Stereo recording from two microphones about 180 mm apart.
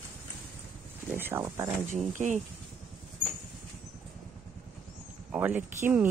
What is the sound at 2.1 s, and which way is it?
Speech, 40° right (ahead or behind).